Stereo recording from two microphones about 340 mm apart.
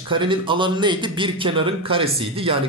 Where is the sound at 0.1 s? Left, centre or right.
Centre.